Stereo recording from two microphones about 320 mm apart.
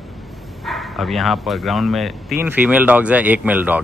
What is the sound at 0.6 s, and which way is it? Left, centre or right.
Speech, centre.